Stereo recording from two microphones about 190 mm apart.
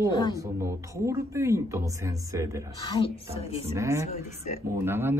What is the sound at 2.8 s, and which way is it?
Speech, 25° left (ahead or behind).